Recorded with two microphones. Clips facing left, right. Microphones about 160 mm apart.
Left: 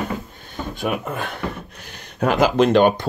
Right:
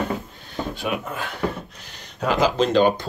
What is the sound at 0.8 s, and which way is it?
Speech, 50° left (ahead or behind).